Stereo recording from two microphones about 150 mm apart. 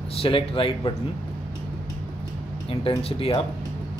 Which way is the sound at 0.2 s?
40° left (ahead or behind).